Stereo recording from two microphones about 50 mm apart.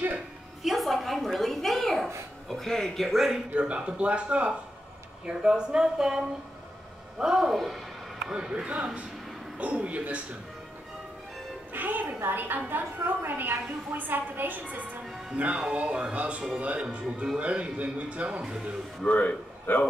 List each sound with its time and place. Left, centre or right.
0.6 s a sound: centre
2.4 s speech: centre
3.5 s speech: right; by 7.8 s centre
8.2 s speech: centre
11.7 s a woman's voice: right
15.3 s speech: right
19.0 s a man's voice: left